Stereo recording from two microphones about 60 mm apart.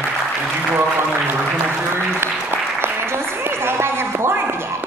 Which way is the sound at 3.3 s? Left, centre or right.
Right.